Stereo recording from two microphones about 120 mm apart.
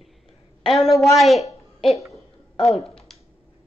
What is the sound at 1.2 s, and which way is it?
Speech, centre (ahead or behind).